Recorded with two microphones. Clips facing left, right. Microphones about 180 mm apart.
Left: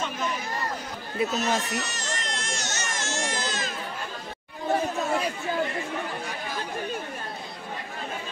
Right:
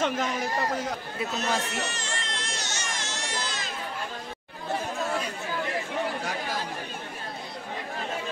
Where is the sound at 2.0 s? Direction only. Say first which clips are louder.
Left 2 dB; 40° left (ahead or behind).